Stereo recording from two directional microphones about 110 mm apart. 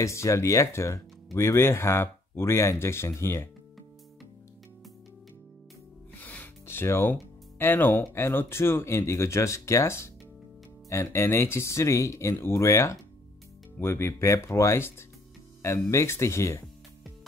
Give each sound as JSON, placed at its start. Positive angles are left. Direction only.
{"t": 0.0, "sound": "speech", "side_deg": 25}
{"t": 6.2, "sound": "speech", "side_deg": 15}